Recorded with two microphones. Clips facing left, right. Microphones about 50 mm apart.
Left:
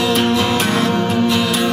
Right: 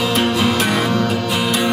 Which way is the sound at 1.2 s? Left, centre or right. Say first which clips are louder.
Left 3 dB; centre.